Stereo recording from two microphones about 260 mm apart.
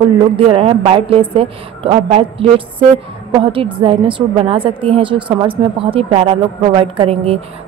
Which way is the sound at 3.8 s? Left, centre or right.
Right.